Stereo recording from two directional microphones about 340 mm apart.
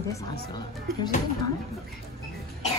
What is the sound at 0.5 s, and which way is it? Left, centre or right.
Speech, centre.